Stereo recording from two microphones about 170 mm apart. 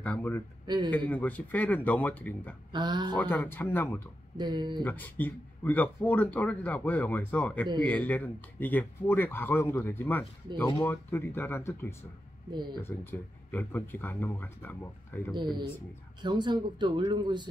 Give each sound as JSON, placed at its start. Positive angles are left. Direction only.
{"t": 0.0, "sound": "speech", "side_deg": 10}
{"t": 0.7, "sound": "speech", "side_deg": -25}
{"t": 0.9, "sound": "speech", "side_deg": 10}
{"t": 2.7, "sound": "speech", "side_deg": -25}
{"t": 3.2, "sound": "speech", "side_deg": 10}
{"t": 4.4, "sound": "speech", "side_deg": -25}
{"t": 4.8, "sound": "speech", "side_deg": 10}
{"t": 15.3, "sound": "speech", "side_deg": -25}